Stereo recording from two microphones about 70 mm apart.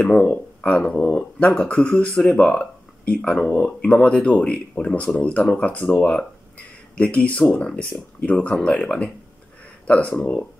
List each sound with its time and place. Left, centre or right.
0.6 s speech: centre